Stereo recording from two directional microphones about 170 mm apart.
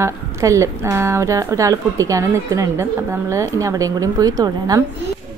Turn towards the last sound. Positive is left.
turn(degrees=-20)  # may be behind; listen again after turning